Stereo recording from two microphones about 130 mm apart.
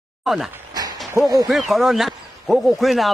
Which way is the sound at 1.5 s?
Centre (ahead or behind).